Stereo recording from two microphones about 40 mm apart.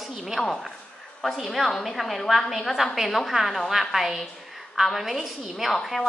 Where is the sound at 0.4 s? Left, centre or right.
Centre.